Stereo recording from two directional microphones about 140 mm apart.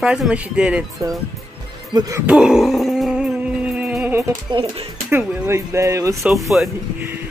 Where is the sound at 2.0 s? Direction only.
25° right (ahead or behind).